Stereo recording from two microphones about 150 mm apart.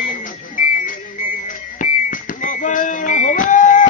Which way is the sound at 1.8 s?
60° left (ahead or behind).